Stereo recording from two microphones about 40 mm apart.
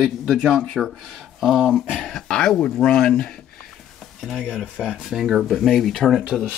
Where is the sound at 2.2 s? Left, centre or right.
Left.